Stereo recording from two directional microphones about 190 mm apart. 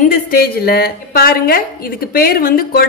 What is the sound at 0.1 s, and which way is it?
A woman's voice, 50° left (ahead or behind).